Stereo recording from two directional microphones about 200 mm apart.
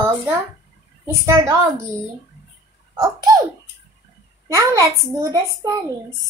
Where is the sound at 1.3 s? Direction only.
15° right (ahead or behind).